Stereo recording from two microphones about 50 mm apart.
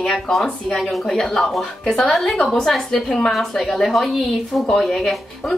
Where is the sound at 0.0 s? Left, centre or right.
Centre.